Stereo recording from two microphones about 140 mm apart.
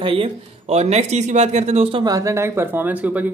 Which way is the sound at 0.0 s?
40° right (ahead or behind).